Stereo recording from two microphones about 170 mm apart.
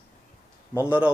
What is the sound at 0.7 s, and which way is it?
Speech, 10° right (ahead or behind).